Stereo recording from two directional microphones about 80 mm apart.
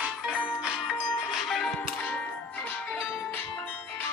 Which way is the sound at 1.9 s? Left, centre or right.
Centre.